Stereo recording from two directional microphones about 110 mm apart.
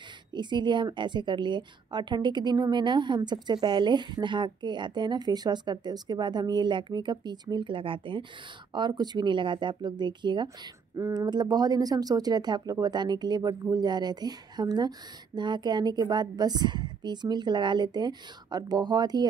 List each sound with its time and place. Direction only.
0.3 s a woman's voice: 45° right (ahead or behind)